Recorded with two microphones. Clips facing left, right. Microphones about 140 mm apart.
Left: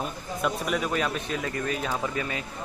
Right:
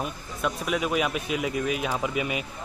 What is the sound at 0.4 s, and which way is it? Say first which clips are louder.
Speech: even; centre (ahead or behind).